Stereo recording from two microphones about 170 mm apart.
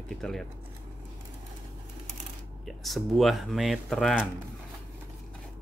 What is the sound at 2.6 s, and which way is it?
Speech, centre (ahead or behind).